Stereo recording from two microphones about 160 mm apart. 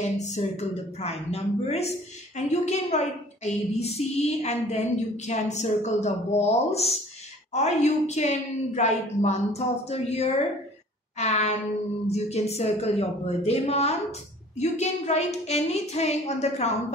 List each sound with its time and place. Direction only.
0.0 s a woman's voice: 45° left (ahead or behind)